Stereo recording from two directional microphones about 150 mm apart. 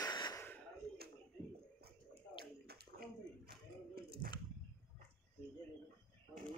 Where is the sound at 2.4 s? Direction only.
85° right.